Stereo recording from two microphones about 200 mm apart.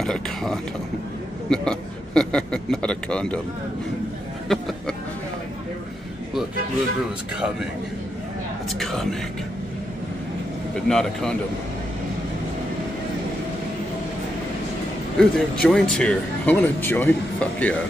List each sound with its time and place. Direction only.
0.0 s a man's voice: centre (ahead or behind)
4.5 s a man's voice: centre (ahead or behind)
8.6 s a man's voice: centre (ahead or behind)
10.9 s a man's voice: 5° left (ahead or behind)
15.1 s speech: 5° left (ahead or behind)